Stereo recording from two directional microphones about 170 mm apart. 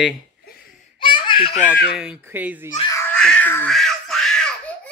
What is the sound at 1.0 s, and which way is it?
Baby laughter, 30° left (ahead or behind).